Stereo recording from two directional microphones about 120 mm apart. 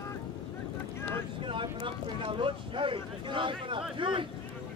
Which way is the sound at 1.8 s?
45° right (ahead or behind).